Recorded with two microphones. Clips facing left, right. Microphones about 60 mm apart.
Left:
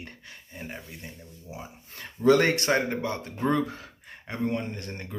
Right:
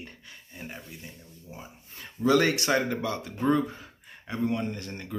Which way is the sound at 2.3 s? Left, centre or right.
Left.